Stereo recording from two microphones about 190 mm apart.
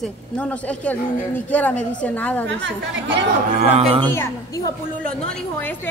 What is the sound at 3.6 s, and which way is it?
Speech, 35° right (ahead or behind).